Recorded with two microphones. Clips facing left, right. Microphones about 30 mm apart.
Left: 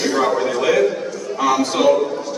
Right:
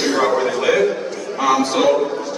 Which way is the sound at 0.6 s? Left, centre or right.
Centre.